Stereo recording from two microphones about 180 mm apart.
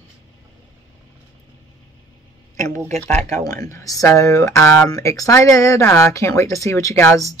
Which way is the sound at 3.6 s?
20° left (ahead or behind).